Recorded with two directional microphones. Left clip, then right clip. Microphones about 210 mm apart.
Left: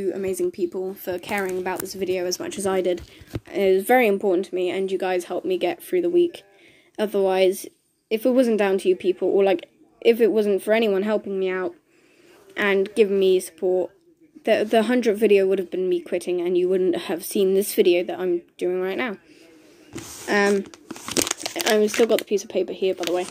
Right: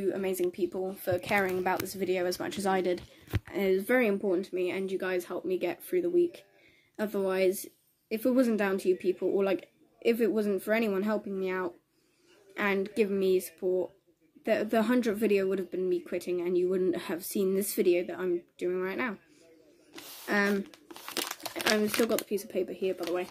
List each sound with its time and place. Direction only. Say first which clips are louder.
0.0 s a woman's voice: left 6 dB; 5° right (ahead or behind)
20.2 s a woman's voice: left 9 dB; 10° right (ahead or behind)
21.0 s a sound: left 11 dB; 30° left (ahead or behind)
21.6 s a woman's voice: left 9 dB; 10° right (ahead or behind)